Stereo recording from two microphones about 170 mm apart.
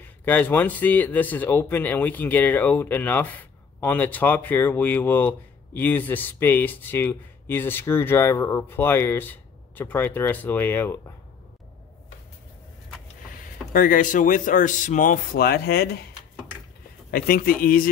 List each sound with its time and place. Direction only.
0.2 s speech: 10° left (ahead or behind)
13.7 s speech: 50° left (ahead or behind)
17.1 s speech: 60° left (ahead or behind)